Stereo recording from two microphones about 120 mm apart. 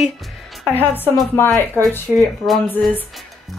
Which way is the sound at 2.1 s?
5° left (ahead or behind).